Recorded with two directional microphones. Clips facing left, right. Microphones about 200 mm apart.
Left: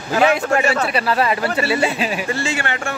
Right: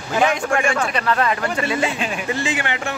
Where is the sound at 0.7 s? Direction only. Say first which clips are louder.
Left 2 dB; 5° left (ahead or behind).